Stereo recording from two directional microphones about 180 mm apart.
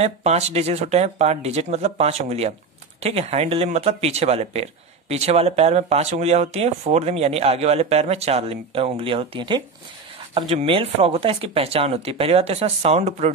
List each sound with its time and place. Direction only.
0.0 s speech: 35° right (ahead or behind)